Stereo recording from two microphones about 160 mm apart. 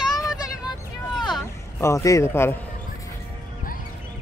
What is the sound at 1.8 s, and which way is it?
Speech, 20° left (ahead or behind).